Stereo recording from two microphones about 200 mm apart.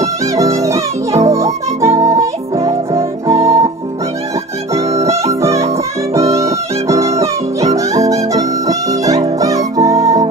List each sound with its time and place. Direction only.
0.0 s music: 15° right (ahead or behind)
4.7 s music: 15° right (ahead or behind)